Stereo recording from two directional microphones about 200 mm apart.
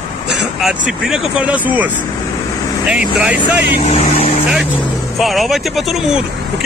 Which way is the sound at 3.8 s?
30° left (ahead or behind).